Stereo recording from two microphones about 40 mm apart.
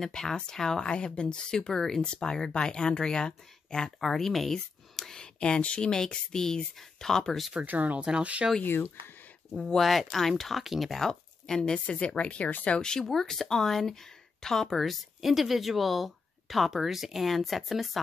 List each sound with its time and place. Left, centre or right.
0.0 s speech: centre
0.8 s speech: left
4.0 s speech: centre
5.1 s speech: left
7.6 s speech: right
8.0 s speech: right
8.6 s speech: left
9.5 s speech: centre
9.8 s speech: centre
11.1 s speech: centre
11.8 s speech: left
13.1 s speech: centre